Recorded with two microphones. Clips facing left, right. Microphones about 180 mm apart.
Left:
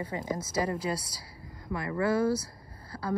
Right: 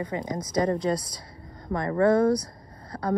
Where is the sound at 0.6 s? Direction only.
35° right (ahead or behind).